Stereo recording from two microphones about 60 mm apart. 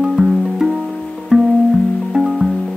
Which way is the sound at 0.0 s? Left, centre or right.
Centre.